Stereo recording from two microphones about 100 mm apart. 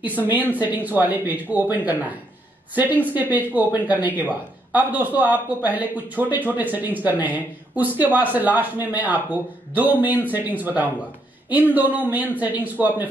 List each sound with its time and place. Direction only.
0.6 s a man's voice: 20° right (ahead or behind)